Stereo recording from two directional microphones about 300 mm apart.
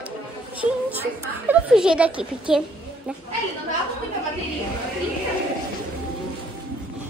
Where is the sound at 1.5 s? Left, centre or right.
Centre.